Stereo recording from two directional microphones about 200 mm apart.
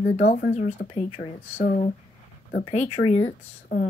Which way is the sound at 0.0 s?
35° left (ahead or behind).